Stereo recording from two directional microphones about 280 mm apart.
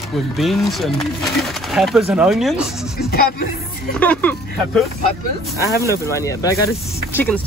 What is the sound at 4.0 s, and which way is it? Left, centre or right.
Speech, centre.